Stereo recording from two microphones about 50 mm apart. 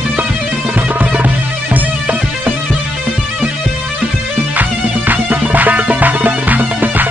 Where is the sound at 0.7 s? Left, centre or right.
Right.